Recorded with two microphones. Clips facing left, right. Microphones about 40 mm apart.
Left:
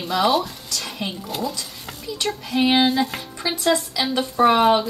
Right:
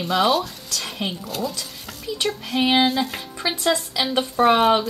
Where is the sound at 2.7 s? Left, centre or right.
Centre.